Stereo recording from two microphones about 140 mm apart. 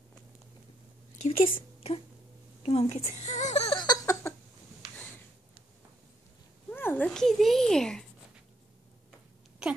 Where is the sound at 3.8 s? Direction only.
25° left (ahead or behind).